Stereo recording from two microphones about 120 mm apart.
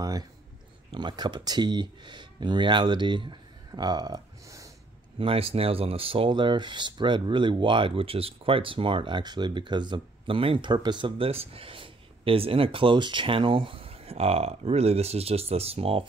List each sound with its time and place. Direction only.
0.9 s speech: 40° right (ahead or behind)
5.2 s speech: 50° right (ahead or behind)